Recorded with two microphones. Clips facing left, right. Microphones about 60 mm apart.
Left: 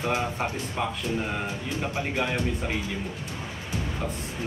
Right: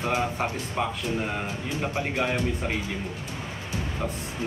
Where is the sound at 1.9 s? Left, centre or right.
Right.